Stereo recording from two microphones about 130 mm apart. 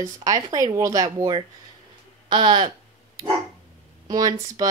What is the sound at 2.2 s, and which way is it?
Speech, 40° right (ahead or behind).